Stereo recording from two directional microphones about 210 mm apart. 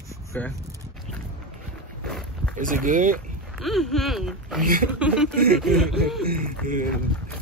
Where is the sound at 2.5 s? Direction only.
40° right (ahead or behind).